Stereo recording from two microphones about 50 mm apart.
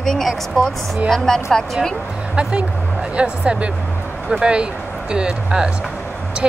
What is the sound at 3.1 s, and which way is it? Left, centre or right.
Speech, right.